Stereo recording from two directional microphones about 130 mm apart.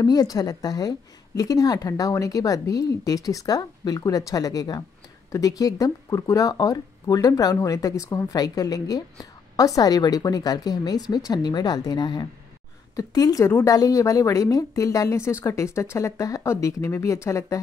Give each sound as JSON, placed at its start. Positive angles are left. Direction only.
{"t": 0.0, "sound": "speech", "side_deg": 30}